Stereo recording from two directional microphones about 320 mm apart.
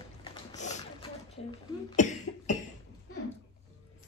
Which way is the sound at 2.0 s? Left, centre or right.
Left.